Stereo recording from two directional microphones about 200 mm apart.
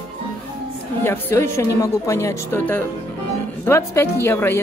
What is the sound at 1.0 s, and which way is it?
A woman's voice, 15° left (ahead or behind).